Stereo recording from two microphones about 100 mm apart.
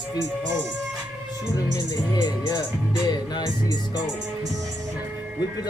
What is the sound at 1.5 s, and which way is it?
Speech, 35° left (ahead or behind).